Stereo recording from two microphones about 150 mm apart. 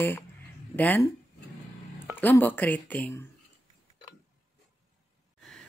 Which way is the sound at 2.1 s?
10° left (ahead or behind).